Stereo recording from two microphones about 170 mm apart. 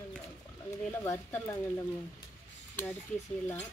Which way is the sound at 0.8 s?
10° left (ahead or behind).